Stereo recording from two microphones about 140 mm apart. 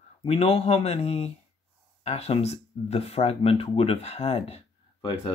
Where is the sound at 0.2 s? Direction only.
45° left (ahead or behind).